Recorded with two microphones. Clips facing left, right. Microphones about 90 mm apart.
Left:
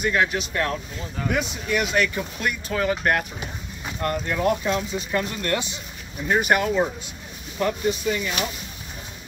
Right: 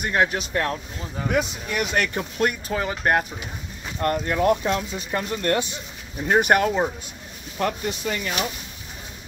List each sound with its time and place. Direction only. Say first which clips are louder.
0.1 s speech: right 1 dB; 35° right (ahead or behind)
1.7 s speech: left 6 dB; 45° right (ahead or behind)
2.7 s speech: even; 20° right (ahead or behind)
4.0 s speech: right 2 dB; 40° right (ahead or behind)
6.2 s speech: right 2 dB; 50° right (ahead or behind)